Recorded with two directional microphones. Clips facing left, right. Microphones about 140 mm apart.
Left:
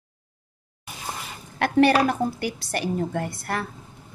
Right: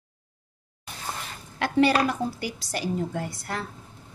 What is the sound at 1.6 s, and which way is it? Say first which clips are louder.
A woman's voice: left 3 dB; 60° left (ahead or behind).